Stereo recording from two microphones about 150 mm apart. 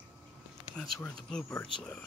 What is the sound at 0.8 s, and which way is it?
Speech, 5° left (ahead or behind).